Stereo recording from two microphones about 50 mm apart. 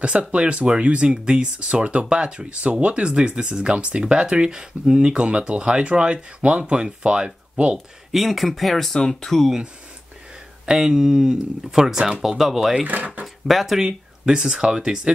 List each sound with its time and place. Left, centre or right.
0.0 s speech: right
7.7 s speech: centre
10.6 s speech: centre
12.8 s speech: right
13.2 s speech: centre
13.8 s speech: centre